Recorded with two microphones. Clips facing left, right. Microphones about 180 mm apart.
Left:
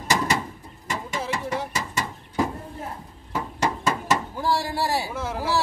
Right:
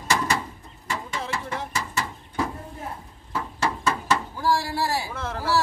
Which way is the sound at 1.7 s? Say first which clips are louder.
Even; 20° left (ahead or behind).